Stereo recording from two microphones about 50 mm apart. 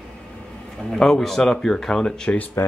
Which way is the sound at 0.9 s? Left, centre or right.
Centre.